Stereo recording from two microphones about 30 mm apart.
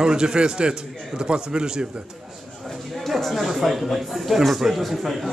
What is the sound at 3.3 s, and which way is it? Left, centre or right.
A man's voice, centre.